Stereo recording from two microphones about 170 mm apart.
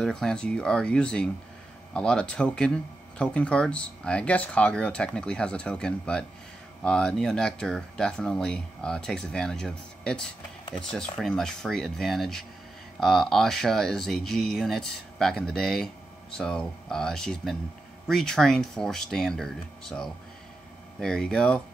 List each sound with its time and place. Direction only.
0.0 s speech: 5° left (ahead or behind)
10.6 s a sound: 25° left (ahead or behind)
10.9 s speech: 5° left (ahead or behind)